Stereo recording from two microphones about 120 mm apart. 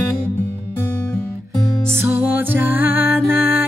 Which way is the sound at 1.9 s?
15° right (ahead or behind).